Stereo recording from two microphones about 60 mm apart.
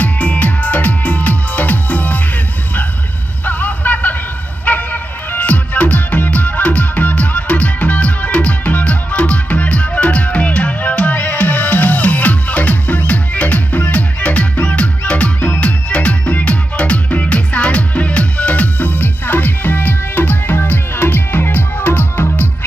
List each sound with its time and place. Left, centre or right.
0.0 s music: left
3.4 s a sound: left
4.6 s music: left